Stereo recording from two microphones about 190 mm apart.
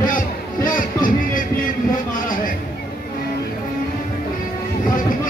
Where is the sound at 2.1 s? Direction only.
45° left (ahead or behind).